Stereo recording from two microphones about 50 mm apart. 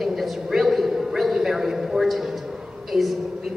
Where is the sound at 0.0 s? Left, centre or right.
Centre.